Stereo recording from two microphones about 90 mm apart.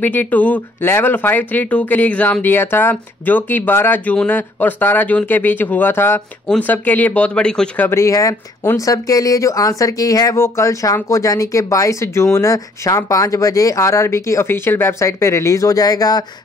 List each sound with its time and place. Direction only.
0.0 s speech: 20° left (ahead or behind)
7.9 s speech: 35° left (ahead or behind)